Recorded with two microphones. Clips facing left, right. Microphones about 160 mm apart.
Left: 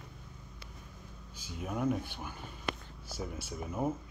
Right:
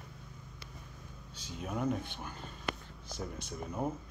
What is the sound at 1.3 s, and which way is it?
Speech, 5° left (ahead or behind).